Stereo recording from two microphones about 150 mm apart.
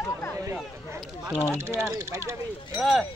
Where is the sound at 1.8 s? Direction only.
20° right (ahead or behind).